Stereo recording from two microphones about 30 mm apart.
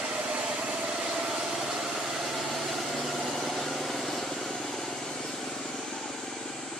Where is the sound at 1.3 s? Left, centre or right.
Centre.